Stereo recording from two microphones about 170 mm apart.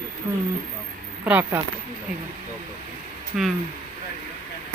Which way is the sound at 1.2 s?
10° right (ahead or behind).